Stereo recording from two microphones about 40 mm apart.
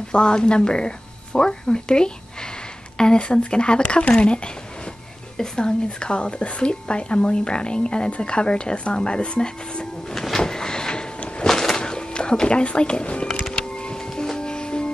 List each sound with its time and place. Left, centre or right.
0.1 s speech: left
5.4 s speech: centre
10.1 s a sound: centre
11.4 s music: centre